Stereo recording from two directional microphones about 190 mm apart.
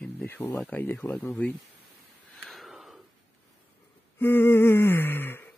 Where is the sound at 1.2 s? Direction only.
10° left (ahead or behind).